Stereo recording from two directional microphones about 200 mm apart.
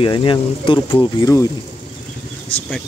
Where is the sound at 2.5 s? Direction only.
5° left (ahead or behind).